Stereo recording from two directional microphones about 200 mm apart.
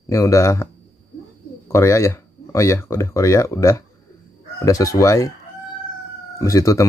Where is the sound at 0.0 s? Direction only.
15° left (ahead or behind).